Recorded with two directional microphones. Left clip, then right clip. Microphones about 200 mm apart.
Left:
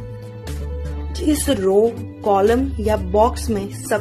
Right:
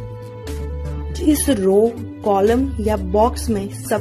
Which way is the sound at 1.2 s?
15° right (ahead or behind).